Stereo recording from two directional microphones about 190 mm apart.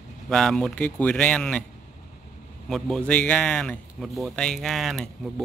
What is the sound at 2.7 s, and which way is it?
A man's voice, 5° left (ahead or behind).